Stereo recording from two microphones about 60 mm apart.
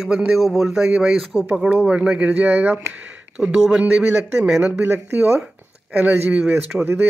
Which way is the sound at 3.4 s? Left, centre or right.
Centre.